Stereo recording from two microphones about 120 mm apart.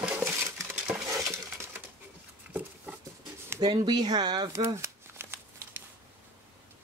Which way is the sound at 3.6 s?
35° right (ahead or behind).